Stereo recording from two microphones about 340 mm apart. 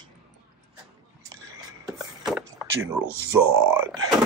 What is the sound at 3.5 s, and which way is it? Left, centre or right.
Groan, right.